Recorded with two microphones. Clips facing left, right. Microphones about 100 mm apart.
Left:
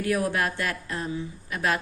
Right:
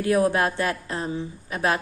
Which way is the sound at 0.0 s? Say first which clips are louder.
Right 5 dB; 25° right (ahead or behind).